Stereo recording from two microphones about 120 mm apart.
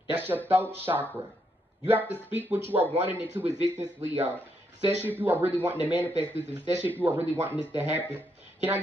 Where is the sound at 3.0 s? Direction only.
15° right (ahead or behind).